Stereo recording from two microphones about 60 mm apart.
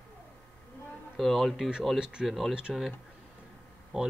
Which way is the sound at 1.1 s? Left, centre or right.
Centre.